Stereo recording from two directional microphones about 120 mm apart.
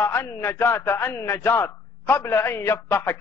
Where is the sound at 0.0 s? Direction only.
20° left (ahead or behind).